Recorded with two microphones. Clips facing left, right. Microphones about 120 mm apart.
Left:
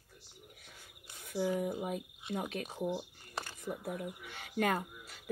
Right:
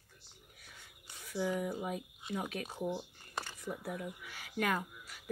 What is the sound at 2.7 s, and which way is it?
Speech, 10° left (ahead or behind).